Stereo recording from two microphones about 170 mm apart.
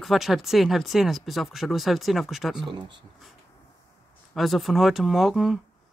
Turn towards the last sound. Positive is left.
turn(degrees=0)  # may be behind; listen again after turning